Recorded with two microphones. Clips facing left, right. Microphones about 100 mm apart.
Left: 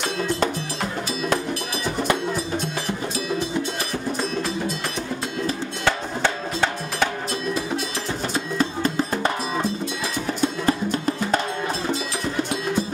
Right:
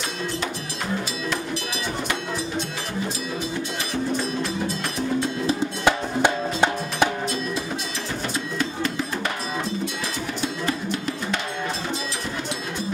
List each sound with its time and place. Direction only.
5.5 s music: 15° right (ahead or behind)
8.5 s music: 35° left (ahead or behind)
10.7 s music: 40° left (ahead or behind)